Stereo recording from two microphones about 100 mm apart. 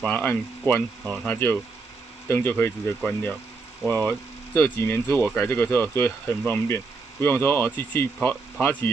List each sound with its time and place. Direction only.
0.0 s speech: 15° left (ahead or behind)
3.8 s speech: 15° left (ahead or behind)